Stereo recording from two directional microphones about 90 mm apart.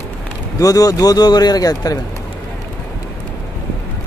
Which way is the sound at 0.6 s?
40° left (ahead or behind).